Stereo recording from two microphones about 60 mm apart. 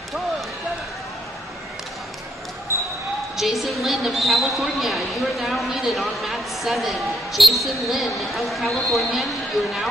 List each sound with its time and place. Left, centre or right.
2.7 s basketball bounce: right
3.3 s a woman's voice: centre